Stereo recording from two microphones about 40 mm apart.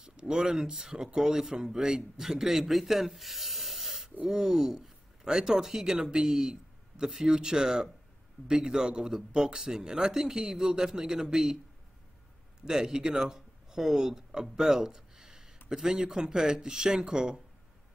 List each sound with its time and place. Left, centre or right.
0.0 s speech: right
12.6 s speech: centre